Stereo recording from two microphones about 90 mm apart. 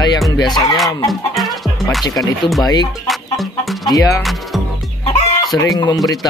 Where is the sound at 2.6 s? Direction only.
50° left (ahead or behind).